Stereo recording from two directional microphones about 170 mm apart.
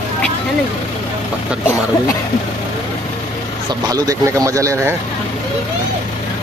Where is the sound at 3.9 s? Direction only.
20° right (ahead or behind).